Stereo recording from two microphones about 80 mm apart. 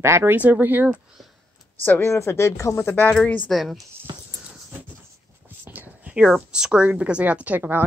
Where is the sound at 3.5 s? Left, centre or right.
Centre.